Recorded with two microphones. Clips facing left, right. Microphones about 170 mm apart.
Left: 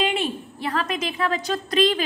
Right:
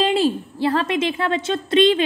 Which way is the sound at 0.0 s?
35° right (ahead or behind).